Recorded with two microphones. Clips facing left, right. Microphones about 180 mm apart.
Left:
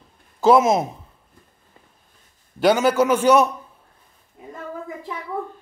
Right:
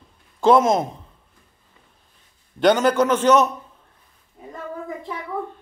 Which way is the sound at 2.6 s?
5° left (ahead or behind).